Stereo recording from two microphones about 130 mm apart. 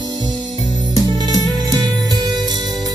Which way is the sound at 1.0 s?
30° right (ahead or behind).